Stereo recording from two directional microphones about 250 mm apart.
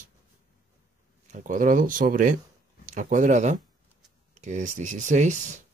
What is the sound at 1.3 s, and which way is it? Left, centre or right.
Speech, right.